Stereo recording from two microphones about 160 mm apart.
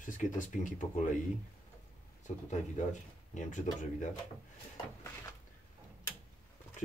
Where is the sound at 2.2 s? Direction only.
50° left (ahead or behind).